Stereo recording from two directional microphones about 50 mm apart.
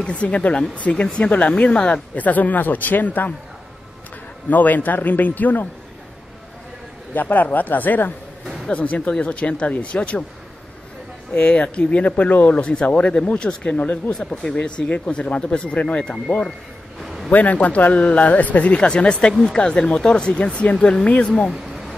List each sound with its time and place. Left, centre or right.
0.0 s speech: left
4.5 s speech: left
7.2 s speech: left
11.3 s speech: left
12.5 s speech: left
14.2 s speech: centre
17.0 s a sound: centre
17.3 s speech: left
18.8 s speech: centre
21.5 s a sound: centre